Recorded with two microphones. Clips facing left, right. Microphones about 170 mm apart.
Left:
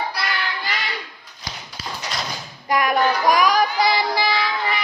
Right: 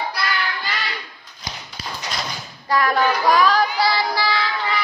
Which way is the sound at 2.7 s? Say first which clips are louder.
Even; 15° left (ahead or behind).